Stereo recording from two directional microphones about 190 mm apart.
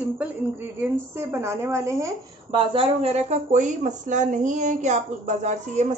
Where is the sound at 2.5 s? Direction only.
30° right (ahead or behind).